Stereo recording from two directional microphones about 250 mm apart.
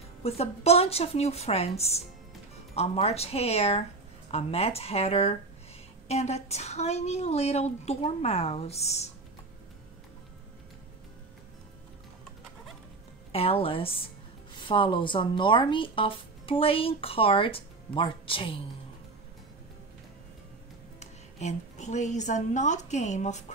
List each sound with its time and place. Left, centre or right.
0.2 s a woman's voice: left
13.3 s speech: left
21.0 s a woman's voice: left